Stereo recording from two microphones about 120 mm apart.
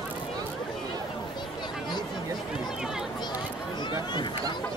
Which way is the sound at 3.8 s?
40° left (ahead or behind).